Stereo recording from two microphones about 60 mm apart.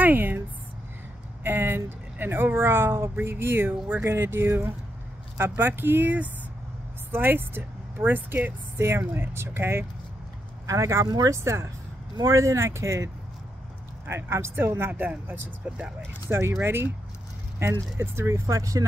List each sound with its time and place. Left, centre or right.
0.0 s a sound: right
1.4 s a woman's voice: right
10.7 s speech: right
14.0 s speech: right
14.9 s speech: right
16.3 s speech: right
18.6 s speech: right